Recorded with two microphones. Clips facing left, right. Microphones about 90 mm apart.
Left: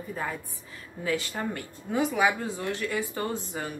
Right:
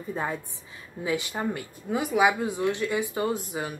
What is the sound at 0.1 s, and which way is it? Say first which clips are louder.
A woman's voice: right 4 dB; 25° right (ahead or behind).